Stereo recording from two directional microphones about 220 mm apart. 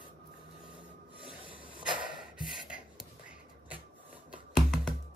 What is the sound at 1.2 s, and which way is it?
Rub, 25° right (ahead or behind).